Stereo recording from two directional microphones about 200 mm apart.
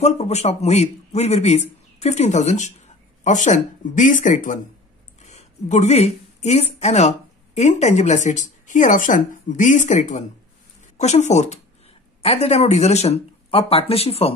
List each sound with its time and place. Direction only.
0.0 s a man's voice: 35° left (ahead or behind)